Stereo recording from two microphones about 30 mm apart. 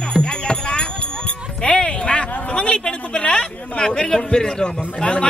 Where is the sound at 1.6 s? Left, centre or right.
Left.